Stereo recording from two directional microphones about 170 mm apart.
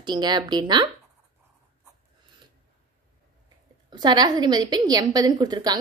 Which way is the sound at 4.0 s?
25° right (ahead or behind).